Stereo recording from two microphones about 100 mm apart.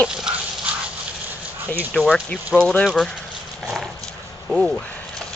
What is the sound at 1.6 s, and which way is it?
Speech, 20° right (ahead or behind).